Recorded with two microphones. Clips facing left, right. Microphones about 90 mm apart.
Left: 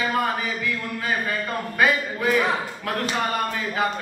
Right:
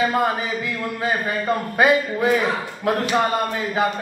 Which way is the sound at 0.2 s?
20° right (ahead or behind).